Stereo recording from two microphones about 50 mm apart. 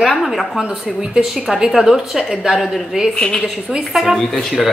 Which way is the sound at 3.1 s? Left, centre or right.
Centre.